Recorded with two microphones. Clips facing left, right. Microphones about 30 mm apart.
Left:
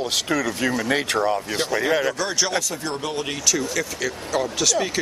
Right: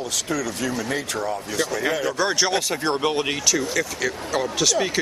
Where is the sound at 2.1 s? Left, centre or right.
Centre.